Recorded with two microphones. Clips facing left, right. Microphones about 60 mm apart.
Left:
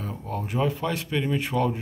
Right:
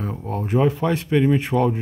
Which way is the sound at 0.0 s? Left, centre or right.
Right.